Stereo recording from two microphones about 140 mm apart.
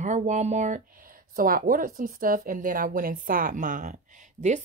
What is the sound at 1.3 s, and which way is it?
A woman's voice, 85° right.